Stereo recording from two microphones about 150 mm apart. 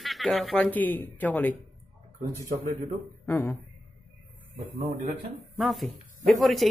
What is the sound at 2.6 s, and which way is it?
Speech, 70° right (ahead or behind).